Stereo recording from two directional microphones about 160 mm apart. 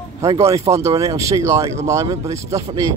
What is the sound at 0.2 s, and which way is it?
Speech, 20° right (ahead or behind).